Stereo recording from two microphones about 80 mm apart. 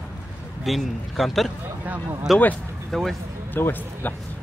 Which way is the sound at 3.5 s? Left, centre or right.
Left.